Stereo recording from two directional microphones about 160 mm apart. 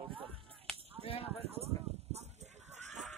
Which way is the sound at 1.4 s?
40° right (ahead or behind).